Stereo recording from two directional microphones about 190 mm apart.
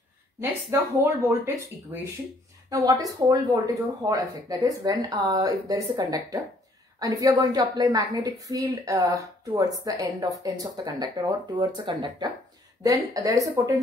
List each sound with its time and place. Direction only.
1.3 s a woman's voice: 10° right (ahead or behind)